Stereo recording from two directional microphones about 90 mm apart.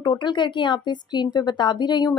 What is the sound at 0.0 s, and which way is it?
Speech, 55° left (ahead or behind).